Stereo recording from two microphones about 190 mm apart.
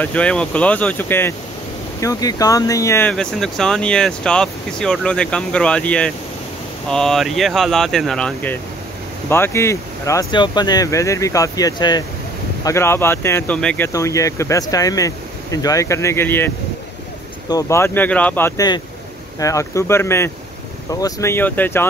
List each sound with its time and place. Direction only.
0.0 s speech: 5° left (ahead or behind)
13.9 s speech: 15° left (ahead or behind)